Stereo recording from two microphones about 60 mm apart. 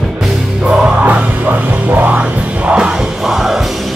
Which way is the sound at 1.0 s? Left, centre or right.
Right.